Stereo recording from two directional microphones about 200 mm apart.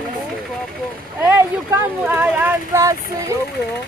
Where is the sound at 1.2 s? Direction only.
10° right (ahead or behind).